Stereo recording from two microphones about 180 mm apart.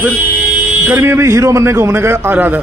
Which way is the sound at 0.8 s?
15° right (ahead or behind).